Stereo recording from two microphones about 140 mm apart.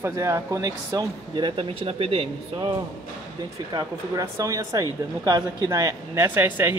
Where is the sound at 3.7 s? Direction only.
25° right (ahead or behind).